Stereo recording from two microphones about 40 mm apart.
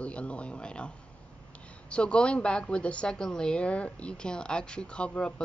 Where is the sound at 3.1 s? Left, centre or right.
Centre.